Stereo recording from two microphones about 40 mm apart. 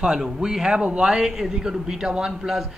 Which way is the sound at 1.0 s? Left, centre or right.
Centre.